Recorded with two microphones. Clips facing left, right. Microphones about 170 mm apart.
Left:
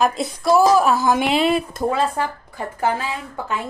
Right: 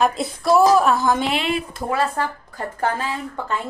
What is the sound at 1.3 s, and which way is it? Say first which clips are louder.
Speech: left 5 dB; 40° left (ahead or behind).